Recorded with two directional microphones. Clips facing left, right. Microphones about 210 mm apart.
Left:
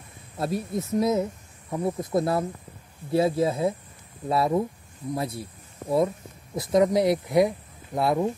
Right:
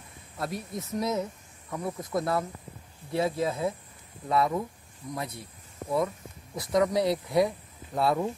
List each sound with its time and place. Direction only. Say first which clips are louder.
0.4 s speech: left 6 dB; 25° left (ahead or behind)